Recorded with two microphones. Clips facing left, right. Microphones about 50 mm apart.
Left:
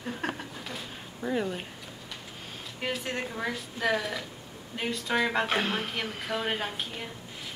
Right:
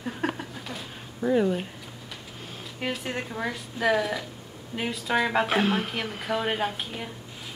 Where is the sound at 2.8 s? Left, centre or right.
Centre.